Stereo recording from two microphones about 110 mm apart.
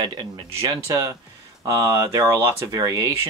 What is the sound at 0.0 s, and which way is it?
Speech, 40° right (ahead or behind).